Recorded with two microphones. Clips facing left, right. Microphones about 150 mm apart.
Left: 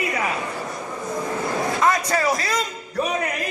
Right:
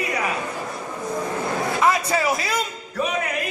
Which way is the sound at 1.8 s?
5° right (ahead or behind).